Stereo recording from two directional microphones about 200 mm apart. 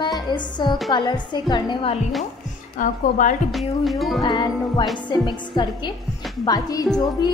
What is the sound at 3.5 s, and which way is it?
Music, centre (ahead or behind).